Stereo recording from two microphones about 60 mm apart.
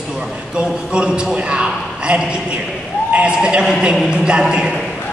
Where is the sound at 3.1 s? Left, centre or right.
Centre.